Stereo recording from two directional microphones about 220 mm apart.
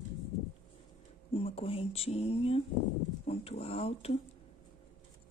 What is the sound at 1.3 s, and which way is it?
Speech, 25° left (ahead or behind).